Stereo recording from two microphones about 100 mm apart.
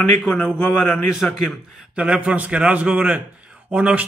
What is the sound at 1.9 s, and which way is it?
A man's voice, 10° right (ahead or behind).